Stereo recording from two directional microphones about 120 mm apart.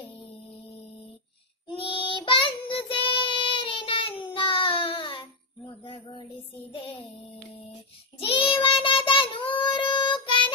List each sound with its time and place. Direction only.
1.8 s child singing: 45° left (ahead or behind)
5.9 s a sound: 40° left (ahead or behind)
6.7 s child singing: 45° left (ahead or behind)
8.2 s child singing: 50° left (ahead or behind)